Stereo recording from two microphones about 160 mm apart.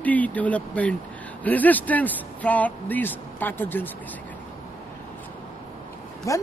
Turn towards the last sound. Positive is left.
turn(degrees=20)  # may be behind; listen again after turning